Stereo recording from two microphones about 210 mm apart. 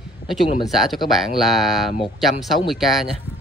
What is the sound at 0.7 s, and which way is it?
Speech, centre (ahead or behind).